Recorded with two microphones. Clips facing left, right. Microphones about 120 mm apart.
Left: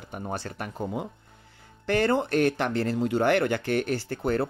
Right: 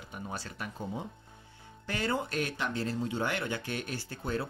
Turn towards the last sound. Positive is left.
turn(degrees=70)  # may be behind; listen again after turning